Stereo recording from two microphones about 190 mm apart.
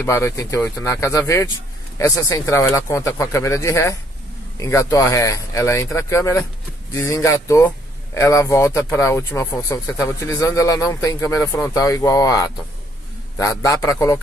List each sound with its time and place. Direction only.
0.0 s speech: 15° left (ahead or behind)